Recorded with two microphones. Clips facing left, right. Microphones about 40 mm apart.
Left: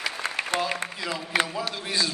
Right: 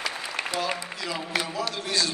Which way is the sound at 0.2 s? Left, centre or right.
Left.